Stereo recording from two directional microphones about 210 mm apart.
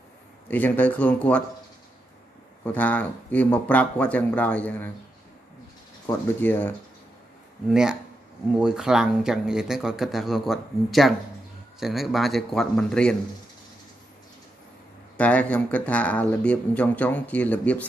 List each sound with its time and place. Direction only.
0.5 s speech: 10° left (ahead or behind)
2.6 s speech: 5° left (ahead or behind)
6.0 s speech: 10° left (ahead or behind)
7.7 s speech: 5° right (ahead or behind)
15.1 s speech: 5° left (ahead or behind)